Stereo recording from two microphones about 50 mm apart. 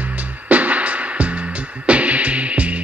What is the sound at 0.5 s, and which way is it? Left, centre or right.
Music, right.